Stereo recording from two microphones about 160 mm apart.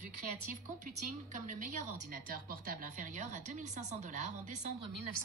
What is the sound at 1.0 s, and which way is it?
A woman's voice, 55° right (ahead or behind).